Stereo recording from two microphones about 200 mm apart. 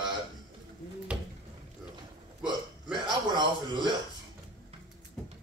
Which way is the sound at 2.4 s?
20° right (ahead or behind).